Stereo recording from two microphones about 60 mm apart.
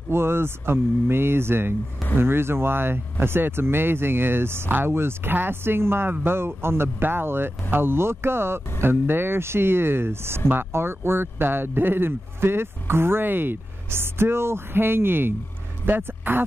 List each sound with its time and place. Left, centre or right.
0.1 s speech: right